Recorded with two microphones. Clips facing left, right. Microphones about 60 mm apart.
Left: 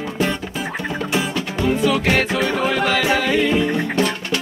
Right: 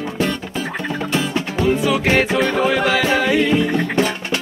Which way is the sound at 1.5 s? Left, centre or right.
Centre.